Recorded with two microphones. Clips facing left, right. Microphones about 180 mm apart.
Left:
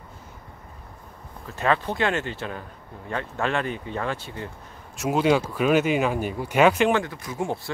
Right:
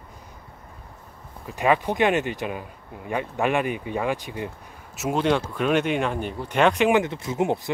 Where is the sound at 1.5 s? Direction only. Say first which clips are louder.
Right 2 dB; 15° right (ahead or behind).